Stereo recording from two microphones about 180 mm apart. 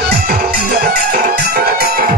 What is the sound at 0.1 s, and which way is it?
Music, 55° right (ahead or behind).